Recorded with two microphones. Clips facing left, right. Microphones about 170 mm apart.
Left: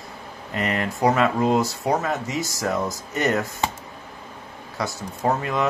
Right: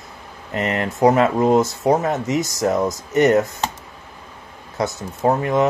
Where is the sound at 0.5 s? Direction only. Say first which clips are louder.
Right 4 dB; 20° right (ahead or behind).